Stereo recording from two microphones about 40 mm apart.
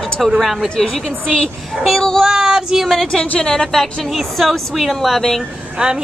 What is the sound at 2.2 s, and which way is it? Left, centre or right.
Speech, centre.